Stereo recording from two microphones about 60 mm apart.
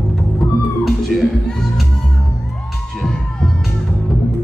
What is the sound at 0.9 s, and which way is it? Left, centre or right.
Music, centre.